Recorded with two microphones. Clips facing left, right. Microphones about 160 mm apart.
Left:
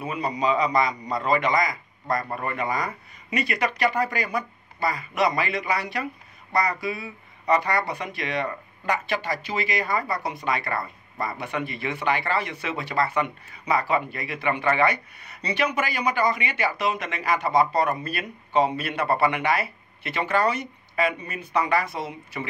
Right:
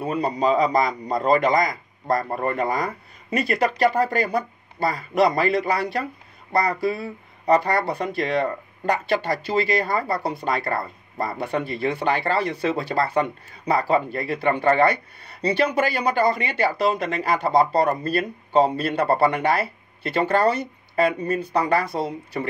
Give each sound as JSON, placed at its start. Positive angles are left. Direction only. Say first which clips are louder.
{"t": 0.0, "sound": "speech", "louder": "right 4 dB", "side_deg": -35}
{"t": 9.8, "sound": "speech", "louder": "right 3 dB", "side_deg": -35}